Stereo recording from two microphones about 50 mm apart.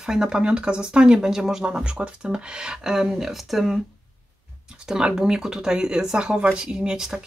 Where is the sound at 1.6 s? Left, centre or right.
Right; by 3.8 s centre.